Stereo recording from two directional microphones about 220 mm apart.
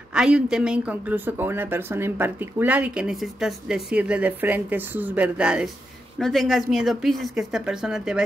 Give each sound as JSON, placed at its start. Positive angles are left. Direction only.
{"t": 0.1, "sound": "speech", "side_deg": -5}